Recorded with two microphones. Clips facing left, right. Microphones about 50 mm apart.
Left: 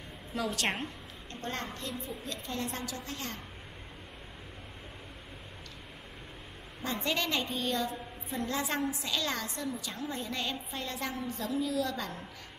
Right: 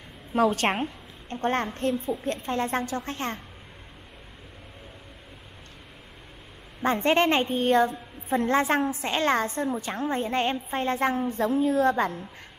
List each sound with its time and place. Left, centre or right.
0.3 s a woman's voice: right
6.8 s a woman's voice: right